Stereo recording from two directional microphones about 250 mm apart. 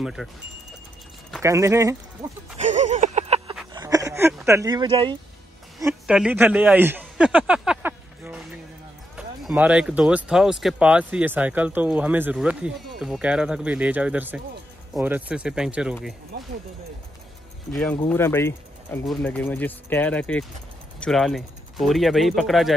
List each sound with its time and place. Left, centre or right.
0.0 s speech: centre
1.4 s a man's voice: centre
2.6 s a sound: right
5.8 s a man's voice: centre
7.0 s a sound: centre
9.1 s speech: centre
17.7 s speech: centre